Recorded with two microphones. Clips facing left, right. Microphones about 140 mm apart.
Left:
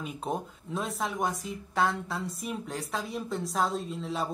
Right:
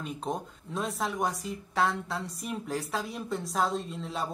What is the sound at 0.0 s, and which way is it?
Speech, 5° left (ahead or behind).